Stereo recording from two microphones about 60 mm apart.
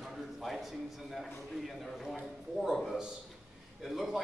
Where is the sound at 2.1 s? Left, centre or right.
Centre.